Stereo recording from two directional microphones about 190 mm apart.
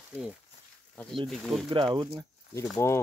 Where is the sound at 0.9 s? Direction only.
5° left (ahead or behind).